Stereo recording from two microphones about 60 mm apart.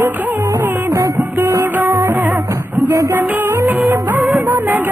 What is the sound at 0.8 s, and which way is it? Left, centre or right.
Music, right.